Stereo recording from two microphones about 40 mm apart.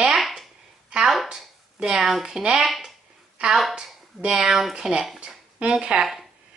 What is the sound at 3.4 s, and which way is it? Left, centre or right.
A woman's voice, right.